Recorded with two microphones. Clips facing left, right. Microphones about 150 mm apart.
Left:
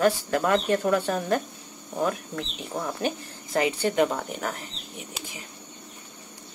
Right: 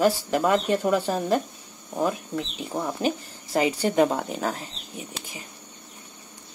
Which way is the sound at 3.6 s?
30° right (ahead or behind).